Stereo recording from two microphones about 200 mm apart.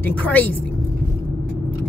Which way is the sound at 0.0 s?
10° left (ahead or behind).